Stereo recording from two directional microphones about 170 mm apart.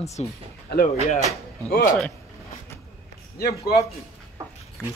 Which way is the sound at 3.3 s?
65° left (ahead or behind).